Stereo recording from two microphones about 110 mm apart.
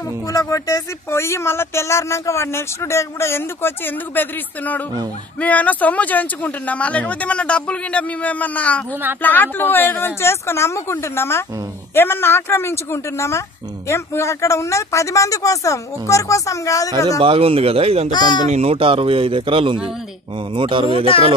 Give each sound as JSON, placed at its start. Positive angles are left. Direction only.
{"t": 0.3, "sound": "speech", "side_deg": 30}
{"t": 17.2, "sound": "speech", "side_deg": -55}
{"t": 18.1, "sound": "speech", "side_deg": 40}
{"t": 18.5, "sound": "speech", "side_deg": -70}